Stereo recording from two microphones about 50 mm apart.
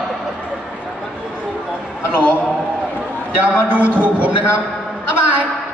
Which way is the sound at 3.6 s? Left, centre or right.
Right.